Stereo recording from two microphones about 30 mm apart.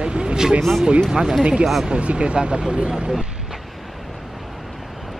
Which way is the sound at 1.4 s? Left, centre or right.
Right.